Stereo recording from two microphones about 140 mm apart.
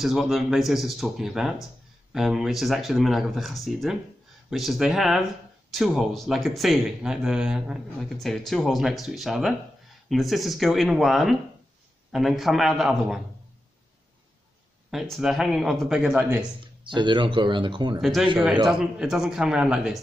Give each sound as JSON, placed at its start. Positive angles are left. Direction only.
{"t": 0.0, "sound": "speech", "side_deg": 0}
{"t": 14.9, "sound": "speech", "side_deg": 0}
{"t": 16.8, "sound": "speech", "side_deg": -35}
{"t": 18.0, "sound": "speech", "side_deg": 0}